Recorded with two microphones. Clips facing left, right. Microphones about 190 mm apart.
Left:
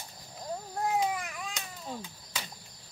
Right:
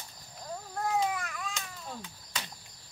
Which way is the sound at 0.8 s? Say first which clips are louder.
Left 1 dB; 15° left (ahead or behind).